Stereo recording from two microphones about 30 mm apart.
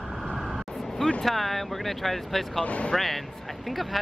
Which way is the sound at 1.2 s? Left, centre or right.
Centre.